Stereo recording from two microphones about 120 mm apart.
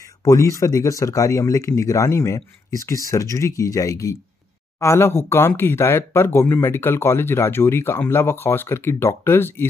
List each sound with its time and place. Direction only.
0.2 s speech: 30° left (ahead or behind)